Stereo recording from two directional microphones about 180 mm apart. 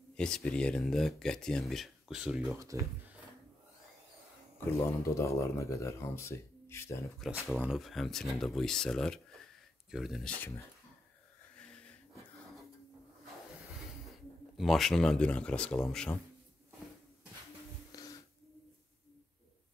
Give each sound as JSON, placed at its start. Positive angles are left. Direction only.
{"t": 0.1, "sound": "speech", "side_deg": 5}
{"t": 2.6, "sound": "speech", "side_deg": -15}
{"t": 4.6, "sound": "speech", "side_deg": 15}
{"t": 7.2, "sound": "speech", "side_deg": 0}
{"t": 11.5, "sound": "a sound", "side_deg": 5}
{"t": 14.6, "sound": "speech", "side_deg": 0}